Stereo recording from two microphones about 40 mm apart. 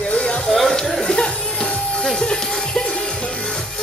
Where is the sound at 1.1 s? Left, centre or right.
Centre.